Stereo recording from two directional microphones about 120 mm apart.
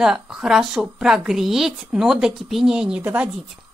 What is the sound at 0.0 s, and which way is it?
Speech, 5° right (ahead or behind).